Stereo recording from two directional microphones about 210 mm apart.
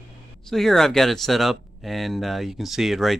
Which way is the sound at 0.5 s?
Centre (ahead or behind).